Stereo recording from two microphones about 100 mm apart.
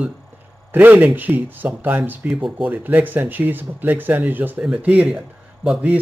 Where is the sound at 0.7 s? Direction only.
15° right (ahead or behind).